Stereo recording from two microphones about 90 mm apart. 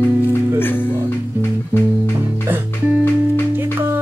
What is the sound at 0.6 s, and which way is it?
Music, 25° left (ahead or behind).